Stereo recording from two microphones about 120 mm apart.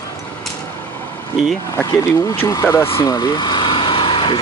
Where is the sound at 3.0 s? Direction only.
35° left (ahead or behind).